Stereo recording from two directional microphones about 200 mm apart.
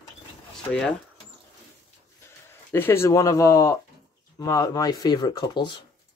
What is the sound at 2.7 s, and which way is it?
Speech, 10° left (ahead or behind).